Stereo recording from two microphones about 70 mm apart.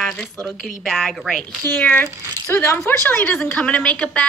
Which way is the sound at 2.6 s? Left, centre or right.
Left.